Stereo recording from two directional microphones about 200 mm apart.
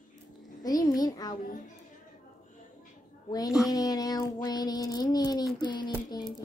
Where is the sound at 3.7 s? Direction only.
20° left (ahead or behind).